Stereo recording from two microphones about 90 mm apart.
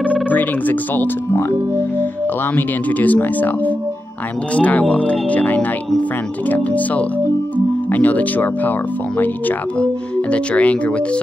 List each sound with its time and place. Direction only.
0.0 s speech: 15° left (ahead or behind)
2.5 s speech: 20° left (ahead or behind)
10.3 s speech: 15° left (ahead or behind)